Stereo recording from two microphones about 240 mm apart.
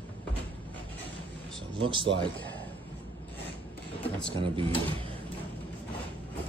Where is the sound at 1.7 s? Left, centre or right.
Right.